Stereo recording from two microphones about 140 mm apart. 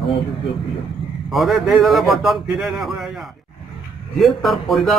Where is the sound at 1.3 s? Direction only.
Centre (ahead or behind).